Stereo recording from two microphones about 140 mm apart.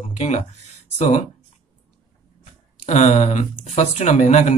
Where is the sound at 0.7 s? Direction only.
60° left (ahead or behind).